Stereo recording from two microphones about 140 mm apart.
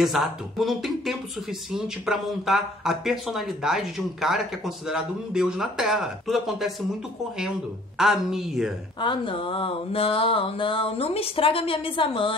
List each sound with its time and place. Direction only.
0.0 s speech: centre (ahead or behind)
8.0 s speech: 5° right (ahead or behind)
9.0 s a sound: 35° left (ahead or behind)